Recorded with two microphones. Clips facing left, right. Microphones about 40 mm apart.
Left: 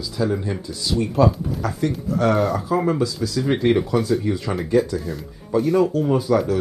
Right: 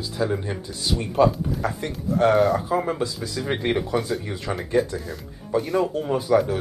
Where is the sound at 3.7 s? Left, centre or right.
Centre.